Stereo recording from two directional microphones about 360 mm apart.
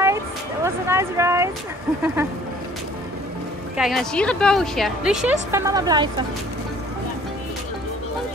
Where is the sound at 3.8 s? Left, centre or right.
Centre.